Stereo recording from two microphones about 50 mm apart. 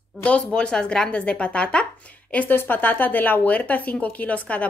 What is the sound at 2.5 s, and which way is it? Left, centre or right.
Speech, left.